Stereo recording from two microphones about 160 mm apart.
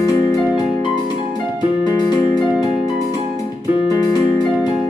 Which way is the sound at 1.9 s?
30° left (ahead or behind).